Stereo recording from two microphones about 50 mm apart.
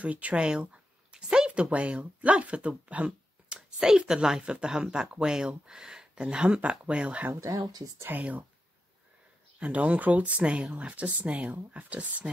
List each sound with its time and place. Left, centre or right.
0.0 s speech: right
0.4 s speech: centre
2.9 s a sound: right
3.5 s a sound: centre
4.1 s speech: centre; by 8.5 s right
9.6 s speech: right